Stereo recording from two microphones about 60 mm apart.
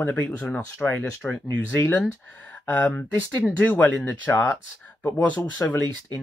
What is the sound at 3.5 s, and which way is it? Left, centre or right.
Speech, left.